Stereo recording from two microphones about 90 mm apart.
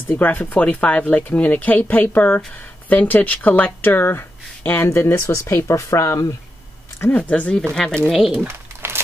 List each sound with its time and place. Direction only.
0.1 s speech: 20° left (ahead or behind)
7.0 s speech: 20° left (ahead or behind)
8.5 s a sound: 25° right (ahead or behind)